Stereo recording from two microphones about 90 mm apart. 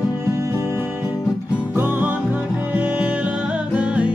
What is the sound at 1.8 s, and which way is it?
Music, 20° right (ahead or behind).